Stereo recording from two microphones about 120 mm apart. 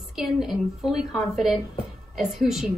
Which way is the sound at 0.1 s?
5° right (ahead or behind).